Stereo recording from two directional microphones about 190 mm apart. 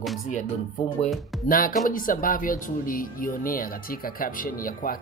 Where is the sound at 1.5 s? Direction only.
45° left (ahead or behind).